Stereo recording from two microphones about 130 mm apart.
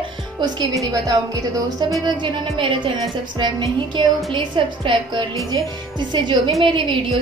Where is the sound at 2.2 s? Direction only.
40° right (ahead or behind).